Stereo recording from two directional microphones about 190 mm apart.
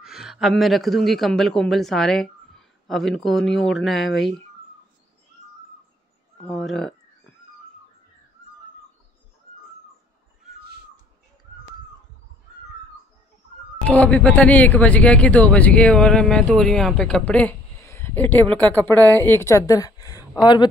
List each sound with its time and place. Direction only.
0.0 s a woman's voice: centre (ahead or behind)
6.5 s a woman's voice: centre (ahead or behind)
13.8 s speech: 5° left (ahead or behind)